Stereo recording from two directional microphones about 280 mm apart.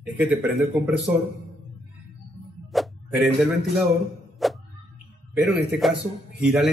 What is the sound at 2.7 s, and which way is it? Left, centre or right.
Music, centre.